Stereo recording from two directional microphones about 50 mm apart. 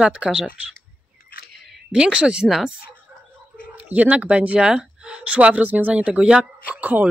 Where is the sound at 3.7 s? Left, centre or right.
Right.